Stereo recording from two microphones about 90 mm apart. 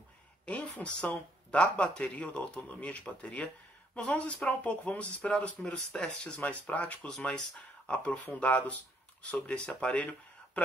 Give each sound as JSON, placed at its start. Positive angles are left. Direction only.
{"t": 0.5, "sound": "speech", "side_deg": 15}